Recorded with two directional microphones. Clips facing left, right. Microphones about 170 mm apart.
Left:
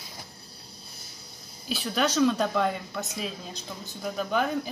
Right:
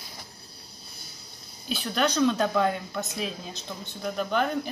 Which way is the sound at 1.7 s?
Centre (ahead or behind).